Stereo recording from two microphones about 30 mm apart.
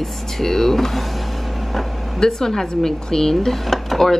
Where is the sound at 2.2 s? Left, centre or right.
Centre.